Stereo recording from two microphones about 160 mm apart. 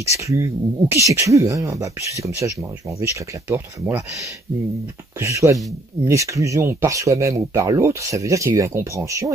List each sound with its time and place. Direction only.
0.2 s speech: 20° right (ahead or behind)
5.2 s speech: 20° right (ahead or behind)